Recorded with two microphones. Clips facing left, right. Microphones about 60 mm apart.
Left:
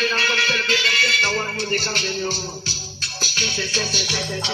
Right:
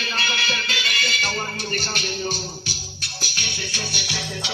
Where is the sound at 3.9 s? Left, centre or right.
Left.